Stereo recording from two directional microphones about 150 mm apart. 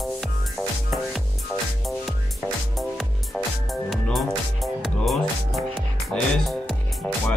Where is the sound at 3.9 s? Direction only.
Centre (ahead or behind).